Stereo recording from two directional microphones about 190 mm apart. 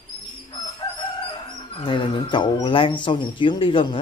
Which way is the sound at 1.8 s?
25° left (ahead or behind).